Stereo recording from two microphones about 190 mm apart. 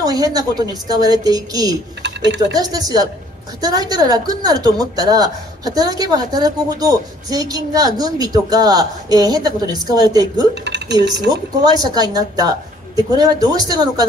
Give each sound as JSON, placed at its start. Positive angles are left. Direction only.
{"t": 0.0, "sound": "a woman's voice", "side_deg": -20}
{"t": 2.0, "sound": "a sound", "side_deg": -65}
{"t": 2.5, "sound": "a woman's voice", "side_deg": -20}
{"t": 10.5, "sound": "speech", "side_deg": -65}
{"t": 11.1, "sound": "a woman's voice", "side_deg": -20}